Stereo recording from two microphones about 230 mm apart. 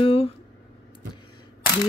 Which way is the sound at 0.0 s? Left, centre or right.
Left.